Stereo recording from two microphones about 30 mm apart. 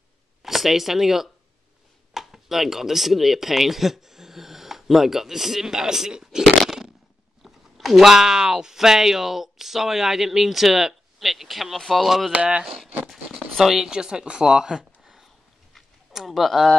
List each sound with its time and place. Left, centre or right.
0.4 s speech: centre
7.4 s speech: centre
13.6 s speech: centre
13.8 s speech: right
16.1 s speech: centre
16.3 s speech: centre